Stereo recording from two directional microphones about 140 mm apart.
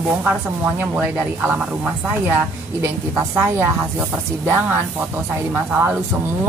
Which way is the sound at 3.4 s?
15° right (ahead or behind).